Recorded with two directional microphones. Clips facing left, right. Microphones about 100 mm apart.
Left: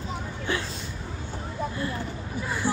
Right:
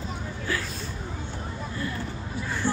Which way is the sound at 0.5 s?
25° left (ahead or behind).